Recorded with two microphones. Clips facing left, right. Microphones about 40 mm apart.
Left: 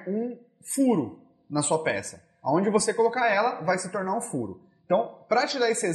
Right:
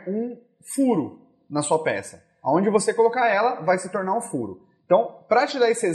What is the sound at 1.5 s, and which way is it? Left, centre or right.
A man's voice, centre.